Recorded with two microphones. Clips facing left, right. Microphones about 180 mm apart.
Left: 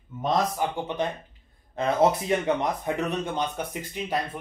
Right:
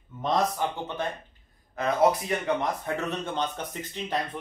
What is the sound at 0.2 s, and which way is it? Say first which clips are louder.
Speech: left 1 dB; 15° left (ahead or behind).